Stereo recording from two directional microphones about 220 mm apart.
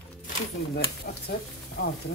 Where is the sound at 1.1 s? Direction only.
45° left (ahead or behind).